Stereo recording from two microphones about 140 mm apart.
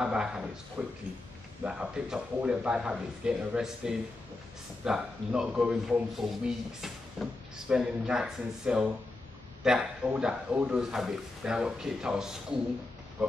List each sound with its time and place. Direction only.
0.0 s a man's voice: 5° right (ahead or behind)